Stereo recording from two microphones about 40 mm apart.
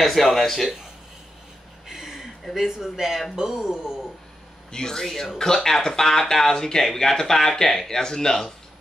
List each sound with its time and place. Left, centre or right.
0.0 s a man's voice: centre
1.9 s a sound: centre
2.5 s speech: centre
4.6 s speech: centre